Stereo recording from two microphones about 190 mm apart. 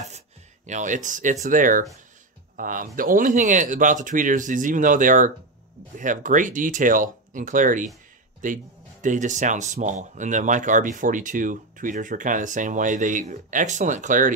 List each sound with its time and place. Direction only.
0.7 s speech: 40° right (ahead or behind)